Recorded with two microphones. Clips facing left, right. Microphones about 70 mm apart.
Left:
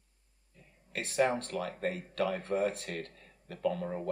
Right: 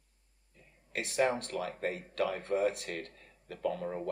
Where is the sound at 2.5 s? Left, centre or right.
Left.